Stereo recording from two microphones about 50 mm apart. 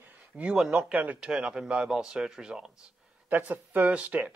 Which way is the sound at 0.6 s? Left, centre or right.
Centre.